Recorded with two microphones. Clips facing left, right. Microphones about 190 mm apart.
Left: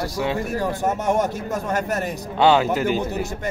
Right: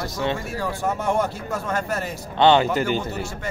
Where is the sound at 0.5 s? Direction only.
20° left (ahead or behind).